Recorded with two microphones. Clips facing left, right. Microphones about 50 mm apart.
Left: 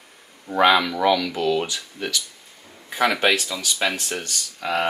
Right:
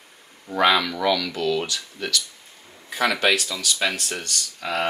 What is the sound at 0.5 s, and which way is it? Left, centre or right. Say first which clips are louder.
Speech: left 2 dB; centre.